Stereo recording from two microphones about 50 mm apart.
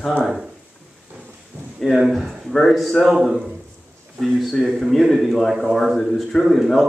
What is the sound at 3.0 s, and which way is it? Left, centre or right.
A man's voice, centre.